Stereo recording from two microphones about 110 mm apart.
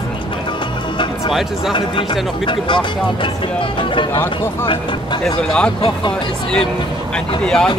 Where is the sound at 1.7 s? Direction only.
50° left (ahead or behind).